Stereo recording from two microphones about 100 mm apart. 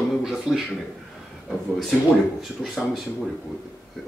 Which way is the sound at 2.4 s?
Centre (ahead or behind).